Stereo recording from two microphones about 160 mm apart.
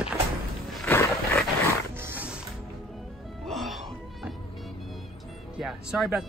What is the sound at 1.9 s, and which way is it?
Music, 15° right (ahead or behind).